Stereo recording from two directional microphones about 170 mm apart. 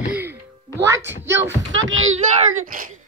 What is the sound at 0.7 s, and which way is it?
Speech, 15° right (ahead or behind).